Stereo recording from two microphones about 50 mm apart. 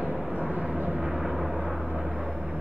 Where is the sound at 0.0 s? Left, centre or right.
Right.